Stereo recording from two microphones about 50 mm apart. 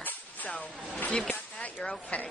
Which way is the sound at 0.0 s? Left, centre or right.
Left.